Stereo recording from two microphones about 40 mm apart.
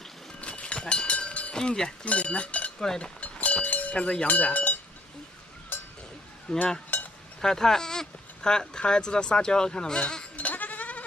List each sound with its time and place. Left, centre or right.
0.4 s vehicle: left
1.5 s speech: centre
2.0 s speech: left
3.2 s cowbell: left
3.9 s speech: left
4.3 s speech: left
6.5 s speech: centre
10.3 s goat: left